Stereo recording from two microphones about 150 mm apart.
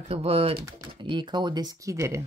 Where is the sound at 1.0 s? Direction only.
30° right (ahead or behind).